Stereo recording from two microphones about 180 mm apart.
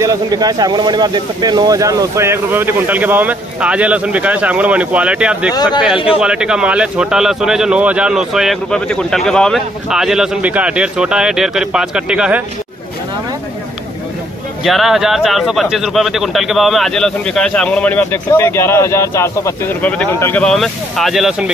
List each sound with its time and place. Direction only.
0.0 s speech: 20° right (ahead or behind)
5.5 s a man's voice: 20° left (ahead or behind)
6.2 s speech: 5° right (ahead or behind)
14.6 s speech: centre (ahead or behind)